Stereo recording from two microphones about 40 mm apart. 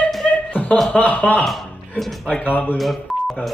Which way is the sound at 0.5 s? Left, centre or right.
Left.